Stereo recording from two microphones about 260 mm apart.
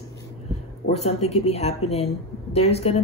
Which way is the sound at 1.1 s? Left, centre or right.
Left.